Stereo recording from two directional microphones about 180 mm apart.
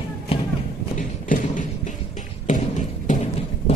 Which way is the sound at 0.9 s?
45° left (ahead or behind).